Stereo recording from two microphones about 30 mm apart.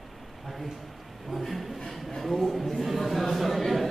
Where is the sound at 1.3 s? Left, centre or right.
Centre.